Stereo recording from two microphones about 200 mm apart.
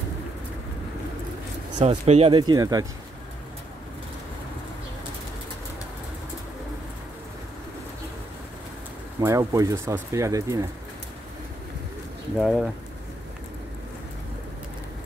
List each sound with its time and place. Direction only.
1.8 s speech: 30° right (ahead or behind)
9.2 s speech: 15° right (ahead or behind)
12.4 s speech: 5° right (ahead or behind)